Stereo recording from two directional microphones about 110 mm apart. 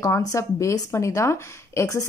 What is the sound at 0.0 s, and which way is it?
A woman's voice, 30° left (ahead or behind).